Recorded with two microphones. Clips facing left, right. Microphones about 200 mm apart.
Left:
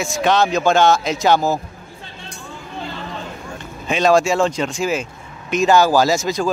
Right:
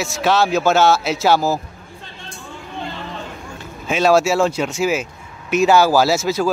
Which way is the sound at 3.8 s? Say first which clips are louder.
Even; 5° right (ahead or behind).